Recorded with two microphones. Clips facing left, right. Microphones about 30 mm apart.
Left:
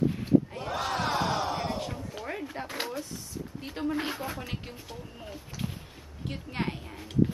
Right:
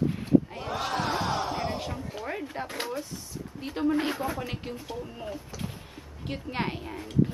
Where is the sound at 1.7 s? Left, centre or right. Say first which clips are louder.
Right 1 dB; centre.